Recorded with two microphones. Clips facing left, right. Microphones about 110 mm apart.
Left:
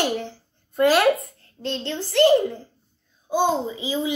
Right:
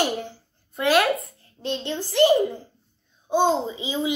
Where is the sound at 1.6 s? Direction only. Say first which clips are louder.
Even; 15° right (ahead or behind).